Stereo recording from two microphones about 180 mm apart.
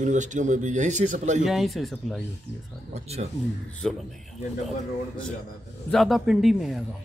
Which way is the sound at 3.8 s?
5° left (ahead or behind).